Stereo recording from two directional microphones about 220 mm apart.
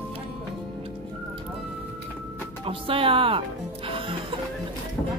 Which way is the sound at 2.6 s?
25° right (ahead or behind).